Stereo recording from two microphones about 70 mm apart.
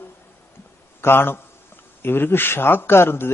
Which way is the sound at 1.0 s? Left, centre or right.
Left.